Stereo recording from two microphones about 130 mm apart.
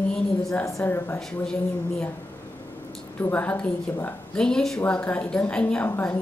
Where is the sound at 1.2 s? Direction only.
5° left (ahead or behind).